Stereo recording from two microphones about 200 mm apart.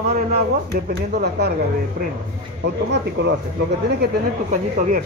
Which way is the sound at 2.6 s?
60° right (ahead or behind).